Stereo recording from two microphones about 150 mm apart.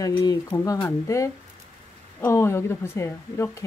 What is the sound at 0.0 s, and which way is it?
Speech, 25° left (ahead or behind).